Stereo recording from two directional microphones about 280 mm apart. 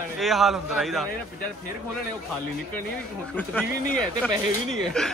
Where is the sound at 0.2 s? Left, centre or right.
Centre.